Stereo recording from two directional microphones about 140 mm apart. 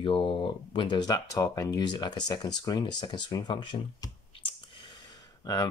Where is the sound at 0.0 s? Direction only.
40° left (ahead or behind).